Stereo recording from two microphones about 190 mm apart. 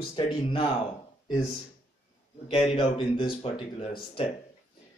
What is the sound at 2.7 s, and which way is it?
Speech, 25° left (ahead or behind).